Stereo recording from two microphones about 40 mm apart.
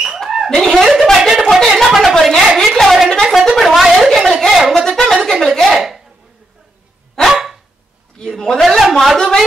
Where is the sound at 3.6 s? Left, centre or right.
Centre.